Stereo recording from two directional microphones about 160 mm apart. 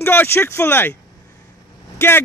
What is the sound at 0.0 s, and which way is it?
Speech, 15° left (ahead or behind).